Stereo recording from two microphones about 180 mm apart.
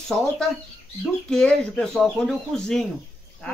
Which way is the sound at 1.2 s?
5° left (ahead or behind).